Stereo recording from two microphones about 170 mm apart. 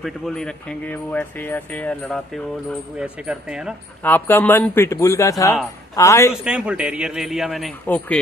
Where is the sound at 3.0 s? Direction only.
5° right (ahead or behind).